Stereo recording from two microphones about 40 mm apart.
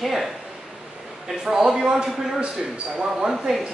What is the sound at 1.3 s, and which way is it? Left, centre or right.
Speech, centre.